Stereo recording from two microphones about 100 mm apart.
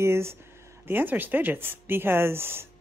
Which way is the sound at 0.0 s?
25° right (ahead or behind).